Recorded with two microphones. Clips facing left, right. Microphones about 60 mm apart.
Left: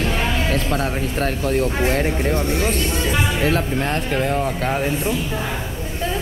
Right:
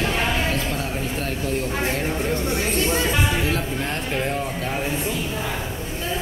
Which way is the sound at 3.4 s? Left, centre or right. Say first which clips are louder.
Left 4 dB; left.